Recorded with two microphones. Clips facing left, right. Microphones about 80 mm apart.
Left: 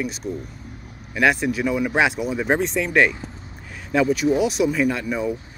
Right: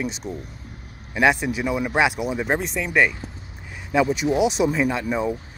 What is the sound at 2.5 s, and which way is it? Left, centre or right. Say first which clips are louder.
Speech: left 5 dB; centre.